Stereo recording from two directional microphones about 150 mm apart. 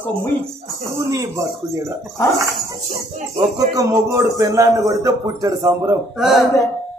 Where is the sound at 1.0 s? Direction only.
20° right (ahead or behind).